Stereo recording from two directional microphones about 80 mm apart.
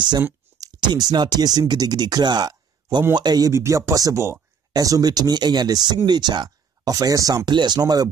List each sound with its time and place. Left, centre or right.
0.8 s speech: right
3.4 s speech: right
4.7 s speech: right
7.4 s speech: right